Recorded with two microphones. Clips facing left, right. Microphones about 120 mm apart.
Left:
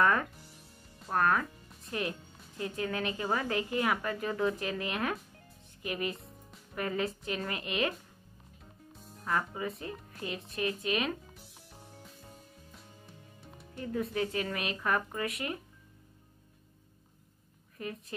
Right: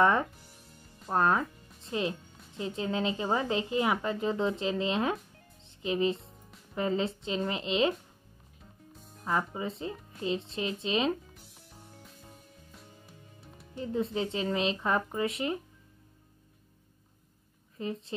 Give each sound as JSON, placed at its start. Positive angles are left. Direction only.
{"t": 0.0, "sound": "a woman's voice", "side_deg": -20}
{"t": 9.2, "sound": "a woman's voice", "side_deg": -20}
{"t": 13.7, "sound": "a woman's voice", "side_deg": -20}
{"t": 17.7, "sound": "a woman's voice", "side_deg": -25}